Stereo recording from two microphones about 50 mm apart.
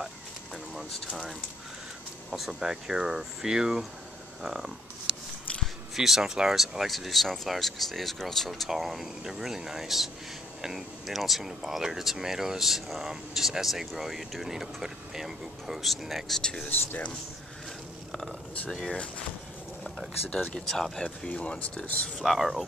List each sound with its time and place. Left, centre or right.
2.3 s speech: centre
16.3 s speech: centre
18.9 s speech: left
20.5 s speech: centre
21.3 s speech: left
22.2 s speech: centre